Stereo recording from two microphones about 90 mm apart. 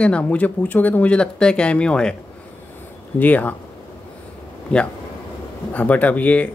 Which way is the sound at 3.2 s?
20° left (ahead or behind).